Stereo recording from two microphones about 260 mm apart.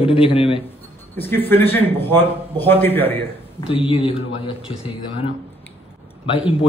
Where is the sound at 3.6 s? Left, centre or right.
Left.